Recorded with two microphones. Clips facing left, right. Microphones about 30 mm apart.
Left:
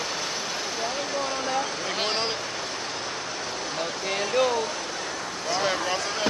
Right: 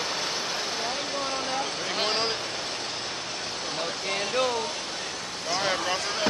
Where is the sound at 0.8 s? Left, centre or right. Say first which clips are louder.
Left 2 dB; right.